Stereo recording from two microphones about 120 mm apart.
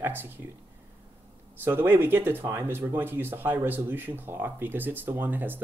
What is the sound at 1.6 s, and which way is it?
Speech, 20° right (ahead or behind).